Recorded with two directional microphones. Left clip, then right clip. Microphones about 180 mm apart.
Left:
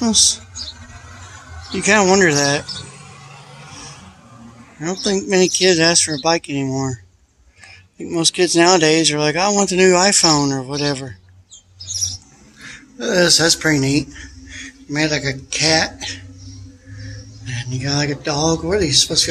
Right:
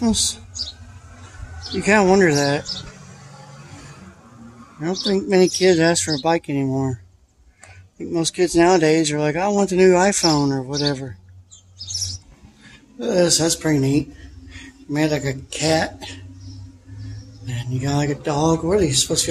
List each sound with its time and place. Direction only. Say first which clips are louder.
0.0 s speech: left 6 dB; 10° right (ahead or behind)
1.7 s speech: left 2 dB; 10° right (ahead or behind)
4.8 s speech: left 1 dB; 15° right (ahead or behind)
8.0 s speech: left 3 dB; 5° right (ahead or behind)
13.0 s speech: left 4 dB; 10° right (ahead or behind)
17.5 s speech: left 2 dB; 15° right (ahead or behind)